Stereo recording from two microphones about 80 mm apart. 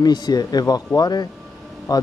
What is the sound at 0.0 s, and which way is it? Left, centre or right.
Speech, left.